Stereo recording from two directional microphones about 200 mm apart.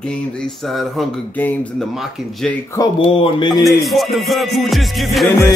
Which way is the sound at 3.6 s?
Centre (ahead or behind).